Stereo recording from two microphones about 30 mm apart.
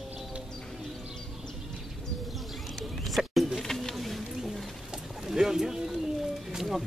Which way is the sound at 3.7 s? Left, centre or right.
Centre.